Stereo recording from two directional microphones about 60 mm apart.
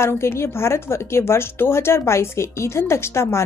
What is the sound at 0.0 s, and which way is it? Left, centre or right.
A woman's voice, left.